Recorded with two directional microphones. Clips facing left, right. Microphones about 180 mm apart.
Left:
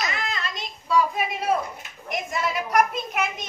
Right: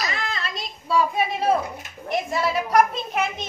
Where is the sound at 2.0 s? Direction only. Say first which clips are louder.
Right 4 dB; 30° right (ahead or behind).